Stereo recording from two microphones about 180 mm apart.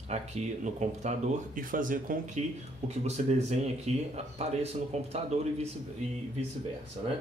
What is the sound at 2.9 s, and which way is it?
Speech, 40° right (ahead or behind).